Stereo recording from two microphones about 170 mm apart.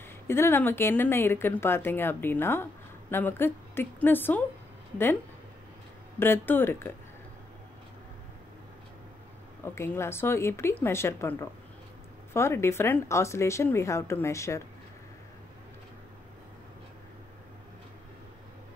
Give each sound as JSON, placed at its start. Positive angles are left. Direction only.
{"t": 0.3, "sound": "speech", "side_deg": 15}
{"t": 6.1, "sound": "speech", "side_deg": 15}
{"t": 9.8, "sound": "speech", "side_deg": 15}